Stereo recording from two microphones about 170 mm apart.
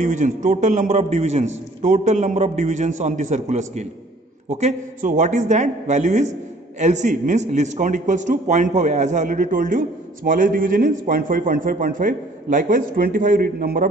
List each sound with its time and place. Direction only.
0.0 s a man's voice: 45° right (ahead or behind)